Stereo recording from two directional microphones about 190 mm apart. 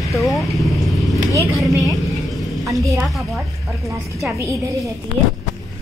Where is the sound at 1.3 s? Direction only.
15° right (ahead or behind).